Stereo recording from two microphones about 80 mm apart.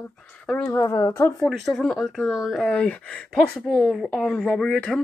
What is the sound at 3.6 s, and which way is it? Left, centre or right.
Speech, centre.